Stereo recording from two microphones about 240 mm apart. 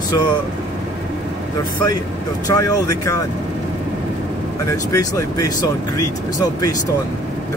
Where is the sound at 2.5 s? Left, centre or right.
Centre.